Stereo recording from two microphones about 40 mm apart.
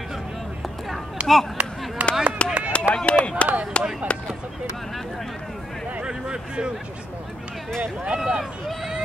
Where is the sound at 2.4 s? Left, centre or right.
Left.